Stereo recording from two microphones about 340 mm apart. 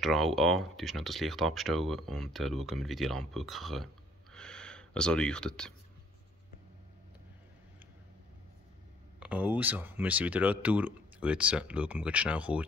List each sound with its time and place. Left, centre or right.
0.0 s speech: centre
9.2 s speech: centre